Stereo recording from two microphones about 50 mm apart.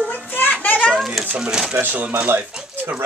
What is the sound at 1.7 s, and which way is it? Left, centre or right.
Speech, right.